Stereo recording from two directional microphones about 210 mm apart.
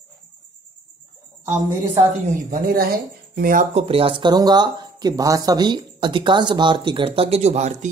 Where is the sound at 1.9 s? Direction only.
35° right (ahead or behind).